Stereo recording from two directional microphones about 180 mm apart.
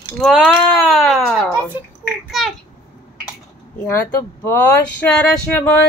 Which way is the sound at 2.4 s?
Centre (ahead or behind).